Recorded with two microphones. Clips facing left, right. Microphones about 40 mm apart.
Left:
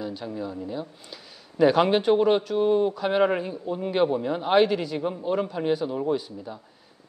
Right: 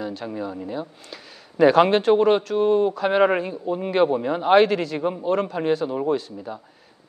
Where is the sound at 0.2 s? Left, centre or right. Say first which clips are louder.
Right 3 dB; right.